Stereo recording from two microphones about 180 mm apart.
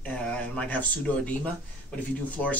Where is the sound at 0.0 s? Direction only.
10° left (ahead or behind).